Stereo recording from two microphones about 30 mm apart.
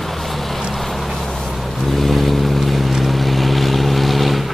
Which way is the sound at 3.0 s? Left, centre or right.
Centre.